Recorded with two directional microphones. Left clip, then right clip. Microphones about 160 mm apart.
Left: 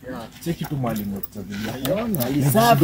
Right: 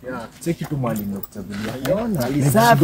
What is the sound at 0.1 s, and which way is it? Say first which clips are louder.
Speech: right 4 dB; centre (ahead or behind).